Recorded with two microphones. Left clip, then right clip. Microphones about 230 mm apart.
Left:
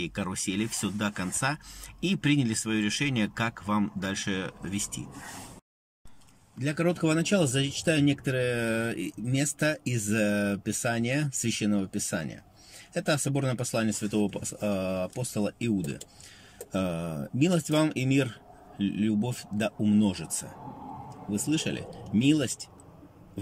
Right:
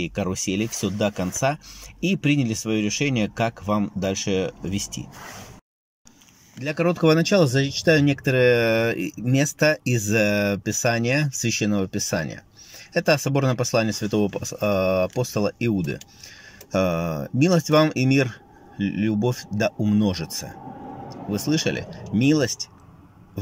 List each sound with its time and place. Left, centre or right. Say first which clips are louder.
0.0 s speech: right 6 dB; centre
6.6 s speech: right 7 dB; centre
16.8 s speech: right 10 dB; right
17.1 s speech: right 7 dB; centre
21.6 s speech: right 8 dB; centre